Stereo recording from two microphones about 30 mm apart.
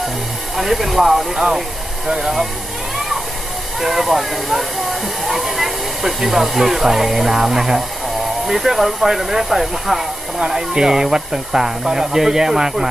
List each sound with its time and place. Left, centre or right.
0.6 s speech: centre
3.8 s speech: centre
10.4 s speech: right